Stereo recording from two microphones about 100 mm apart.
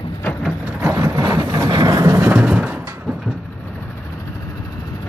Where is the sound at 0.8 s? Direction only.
25° right (ahead or behind).